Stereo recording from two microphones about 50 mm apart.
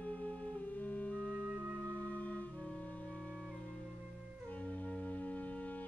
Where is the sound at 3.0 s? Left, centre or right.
Centre.